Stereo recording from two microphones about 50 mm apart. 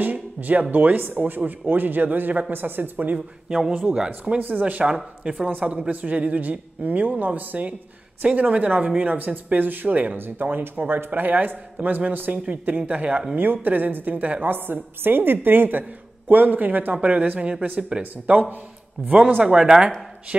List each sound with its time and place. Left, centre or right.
0.0 s speech: right
3.4 s speech: centre
4.4 s speech: right
10.1 s speech: right
19.4 s speech: centre